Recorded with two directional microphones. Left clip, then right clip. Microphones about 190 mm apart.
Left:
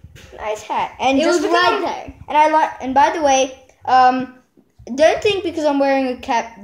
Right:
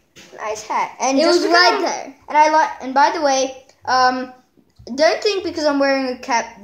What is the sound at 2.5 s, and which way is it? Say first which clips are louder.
Speech: left 1 dB; 45° left (ahead or behind).